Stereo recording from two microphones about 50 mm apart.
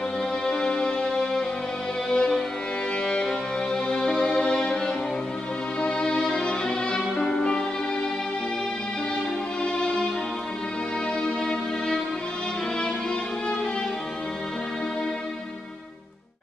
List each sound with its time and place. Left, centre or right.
0.5 s music: centre
5.8 s violin: centre
9.6 s music: left
11.2 s music: centre